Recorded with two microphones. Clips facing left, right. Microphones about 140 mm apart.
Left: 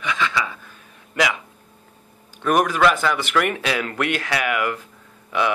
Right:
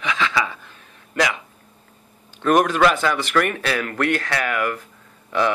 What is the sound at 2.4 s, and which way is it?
Speech, 10° left (ahead or behind).